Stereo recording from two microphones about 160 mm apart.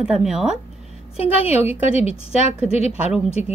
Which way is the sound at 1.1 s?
40° left (ahead or behind).